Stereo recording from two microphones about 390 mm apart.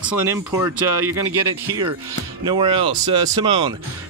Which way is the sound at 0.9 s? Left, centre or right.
Right.